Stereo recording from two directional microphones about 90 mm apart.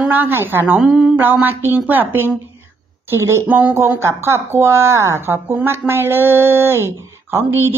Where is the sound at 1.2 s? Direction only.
20° right (ahead or behind).